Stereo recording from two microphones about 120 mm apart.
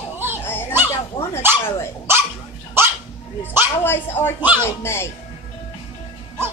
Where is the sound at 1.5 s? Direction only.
15° right (ahead or behind).